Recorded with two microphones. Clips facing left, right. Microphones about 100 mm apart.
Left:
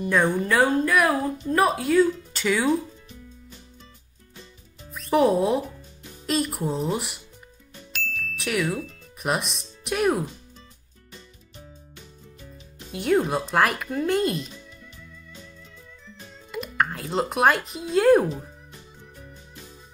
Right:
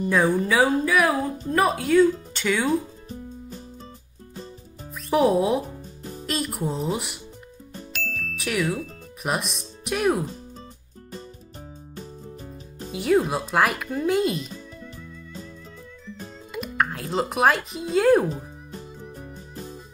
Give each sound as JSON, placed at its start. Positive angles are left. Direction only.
{"t": 0.1, "sound": "speech", "side_deg": 0}
{"t": 3.1, "sound": "music", "side_deg": -40}
{"t": 4.9, "sound": "speech", "side_deg": 0}
{"t": 5.6, "sound": "music", "side_deg": -40}
{"t": 6.2, "sound": "speech", "side_deg": 0}
{"t": 7.9, "sound": "music", "side_deg": 0}
{"t": 9.2, "sound": "speech", "side_deg": 0}
{"t": 11.9, "sound": "music", "side_deg": -40}
{"t": 12.9, "sound": "speech", "side_deg": 0}
{"t": 16.5, "sound": "speech", "side_deg": 0}
{"t": 18.3, "sound": "music", "side_deg": -40}